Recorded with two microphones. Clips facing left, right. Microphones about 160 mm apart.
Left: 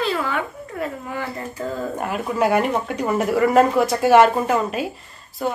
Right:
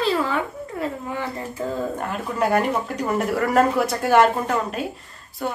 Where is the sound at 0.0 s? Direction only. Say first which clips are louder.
Right 1 dB; 30° right (ahead or behind).